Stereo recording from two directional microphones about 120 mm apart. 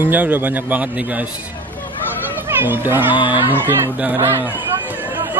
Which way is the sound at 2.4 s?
20° right (ahead or behind).